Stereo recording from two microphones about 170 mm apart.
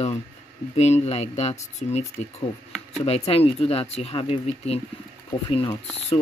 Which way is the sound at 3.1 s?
35° left (ahead or behind).